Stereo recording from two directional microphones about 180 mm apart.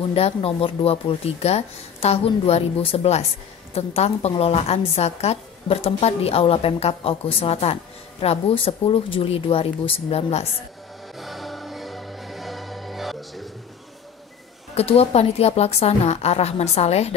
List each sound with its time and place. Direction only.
0.1 s a woman's voice: 30° left (ahead or behind)
11.1 s music: centre (ahead or behind)
14.8 s a woman's voice: 35° left (ahead or behind)